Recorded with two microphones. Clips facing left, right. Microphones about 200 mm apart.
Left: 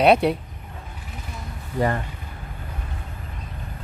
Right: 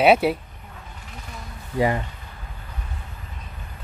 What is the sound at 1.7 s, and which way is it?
Speech, 10° right (ahead or behind).